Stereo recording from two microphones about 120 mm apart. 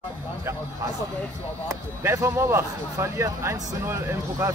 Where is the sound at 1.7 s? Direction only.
25° right (ahead or behind).